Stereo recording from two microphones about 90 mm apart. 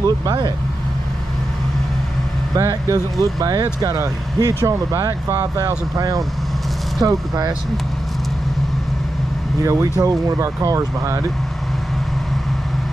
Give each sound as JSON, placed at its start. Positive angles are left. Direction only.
{"t": 0.0, "sound": "speech", "side_deg": -55}
{"t": 2.5, "sound": "speech", "side_deg": -40}
{"t": 9.7, "sound": "speech", "side_deg": -35}